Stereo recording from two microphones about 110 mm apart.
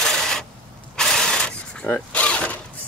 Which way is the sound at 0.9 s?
5° left (ahead or behind).